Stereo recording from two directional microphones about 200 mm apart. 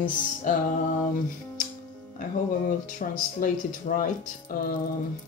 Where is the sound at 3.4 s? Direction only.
45° left (ahead or behind).